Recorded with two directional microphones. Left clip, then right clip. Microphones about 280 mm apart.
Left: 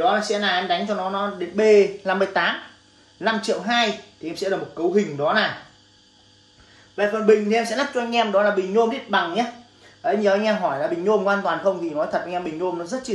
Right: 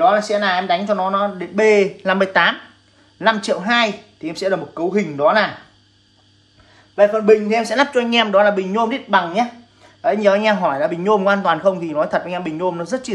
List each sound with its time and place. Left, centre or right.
0.0 s speech: centre
7.0 s speech: centre